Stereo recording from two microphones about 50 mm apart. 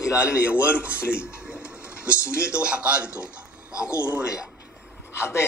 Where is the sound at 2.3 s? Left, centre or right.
Right.